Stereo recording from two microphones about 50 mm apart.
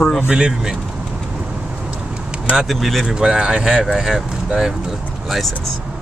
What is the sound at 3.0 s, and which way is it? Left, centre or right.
Speech, centre.